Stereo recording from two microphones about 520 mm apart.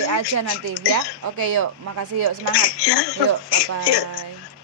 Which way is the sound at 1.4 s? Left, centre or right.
Right.